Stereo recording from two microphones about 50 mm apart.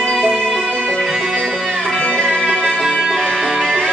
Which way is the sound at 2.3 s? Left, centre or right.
Centre.